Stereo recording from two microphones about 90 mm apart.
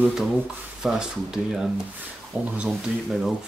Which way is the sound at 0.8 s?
5° right (ahead or behind).